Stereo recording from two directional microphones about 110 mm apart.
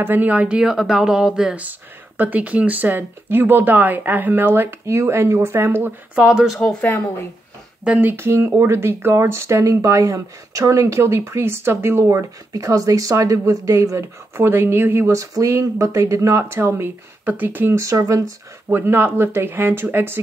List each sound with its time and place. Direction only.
0.0 s speech: 15° right (ahead or behind); by 6.9 s 5° left (ahead or behind)
7.8 s speech: 15° right (ahead or behind)